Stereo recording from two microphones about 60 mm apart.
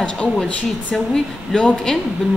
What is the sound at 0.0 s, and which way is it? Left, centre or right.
A woman's voice, centre.